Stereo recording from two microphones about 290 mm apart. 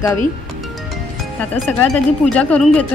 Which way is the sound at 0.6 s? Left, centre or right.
Centre.